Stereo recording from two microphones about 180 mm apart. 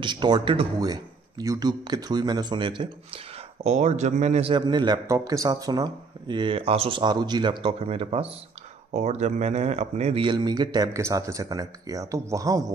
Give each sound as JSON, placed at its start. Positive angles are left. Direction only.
{"t": 0.0, "sound": "speech", "side_deg": -25}
{"t": 3.6, "sound": "speech", "side_deg": -40}